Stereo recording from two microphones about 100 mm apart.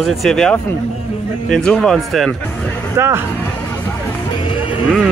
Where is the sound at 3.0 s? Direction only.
25° right (ahead or behind).